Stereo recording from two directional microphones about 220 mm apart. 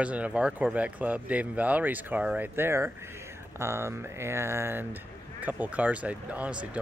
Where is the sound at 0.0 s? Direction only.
5° right (ahead or behind).